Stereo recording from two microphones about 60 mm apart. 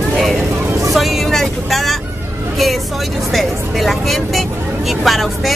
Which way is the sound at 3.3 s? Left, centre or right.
Centre.